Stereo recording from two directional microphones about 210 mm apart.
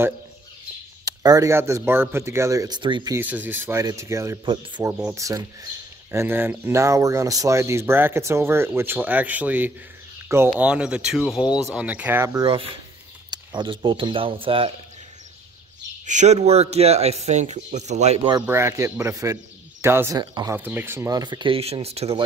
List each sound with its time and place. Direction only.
1.0 s speech: 15° right (ahead or behind)
3.2 s speech: 10° right (ahead or behind)
4.9 s speech: 5° right (ahead or behind)
5.2 s speech: 15° right (ahead or behind)
13.3 s speech: 20° right (ahead or behind)
16.1 s speech: 35° right (ahead or behind)
18.4 s speech: 10° right (ahead or behind); by 22.2 s 30° right (ahead or behind)